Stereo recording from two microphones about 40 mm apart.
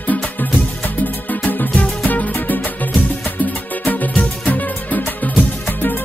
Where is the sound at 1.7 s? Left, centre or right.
Left.